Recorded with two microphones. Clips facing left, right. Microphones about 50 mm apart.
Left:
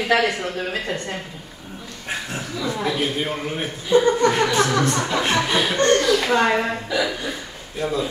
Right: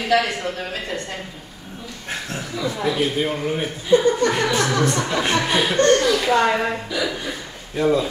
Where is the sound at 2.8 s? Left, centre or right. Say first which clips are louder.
Right 3 dB; centre.